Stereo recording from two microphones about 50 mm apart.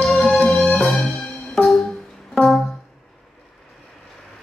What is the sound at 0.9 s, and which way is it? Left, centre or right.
Music, centre.